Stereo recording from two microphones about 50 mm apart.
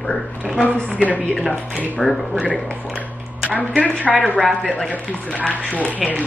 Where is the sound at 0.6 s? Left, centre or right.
Left.